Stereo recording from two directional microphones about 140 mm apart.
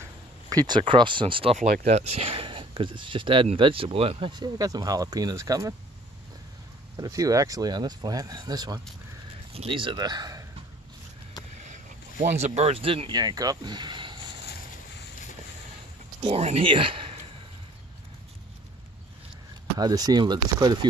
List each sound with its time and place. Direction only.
0.5 s speech: 30° right (ahead or behind)
4.3 s speech: 30° right (ahead or behind)
7.0 s speech: 25° right (ahead or behind)
9.5 s speech: 40° right (ahead or behind)
11.5 s speech: 60° right (ahead or behind); by 14.1 s 35° right (ahead or behind)
16.2 s speech: 45° right (ahead or behind)
19.8 s speech: 25° right (ahead or behind)